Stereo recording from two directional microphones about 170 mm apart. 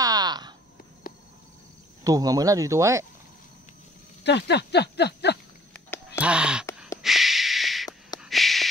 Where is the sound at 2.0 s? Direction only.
20° right (ahead or behind).